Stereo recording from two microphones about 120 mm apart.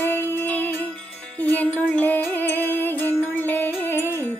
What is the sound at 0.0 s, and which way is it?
Music, 20° left (ahead or behind).